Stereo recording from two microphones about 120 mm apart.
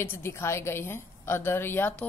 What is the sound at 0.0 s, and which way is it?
A woman's voice, 20° left (ahead or behind).